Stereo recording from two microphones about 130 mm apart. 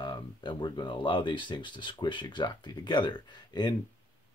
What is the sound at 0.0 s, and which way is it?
Speech, 35° left (ahead or behind).